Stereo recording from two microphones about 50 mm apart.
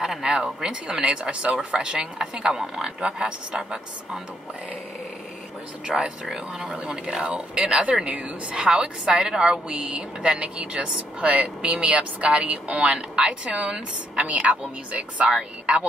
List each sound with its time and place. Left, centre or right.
0.0 s speech: centre
5.9 s a woman's voice: centre